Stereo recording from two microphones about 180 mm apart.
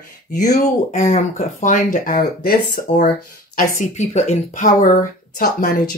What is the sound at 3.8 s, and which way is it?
Speech, 40° left (ahead or behind).